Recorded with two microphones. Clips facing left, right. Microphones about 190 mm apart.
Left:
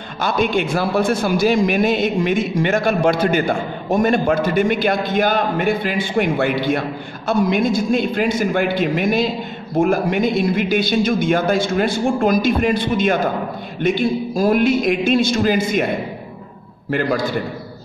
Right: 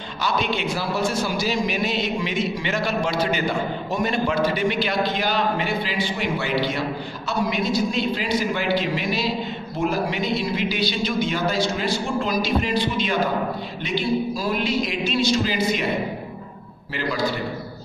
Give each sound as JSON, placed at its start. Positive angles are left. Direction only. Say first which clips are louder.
{"t": 0.2, "sound": "a man's voice", "louder": "left 6 dB", "side_deg": 50}